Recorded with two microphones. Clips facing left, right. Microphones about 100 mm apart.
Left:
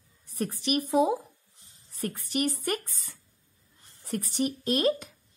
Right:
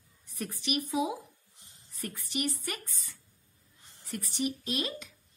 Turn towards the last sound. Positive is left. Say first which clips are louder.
# left 10 dB
turn(degrees=45)  # may be behind; listen again after turning